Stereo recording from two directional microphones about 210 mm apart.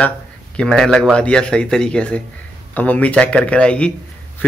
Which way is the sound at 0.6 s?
5° left (ahead or behind).